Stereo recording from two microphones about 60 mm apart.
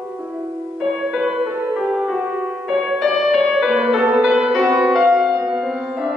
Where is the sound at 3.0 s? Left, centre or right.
Centre.